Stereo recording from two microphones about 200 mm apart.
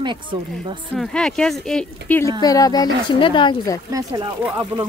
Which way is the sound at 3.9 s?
20° right (ahead or behind).